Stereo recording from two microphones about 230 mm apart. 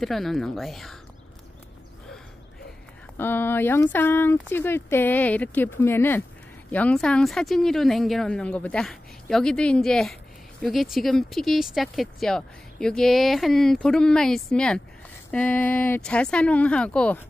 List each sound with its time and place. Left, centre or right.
0.0 s speech: centre
3.2 s speech: centre